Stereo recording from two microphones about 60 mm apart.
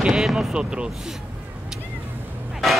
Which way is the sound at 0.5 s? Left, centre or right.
Centre.